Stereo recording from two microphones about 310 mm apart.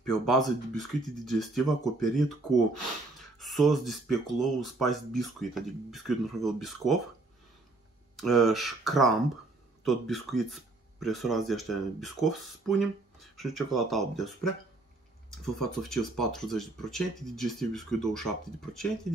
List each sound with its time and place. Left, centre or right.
0.0 s speech: centre
8.2 s speech: centre
15.7 s speech: centre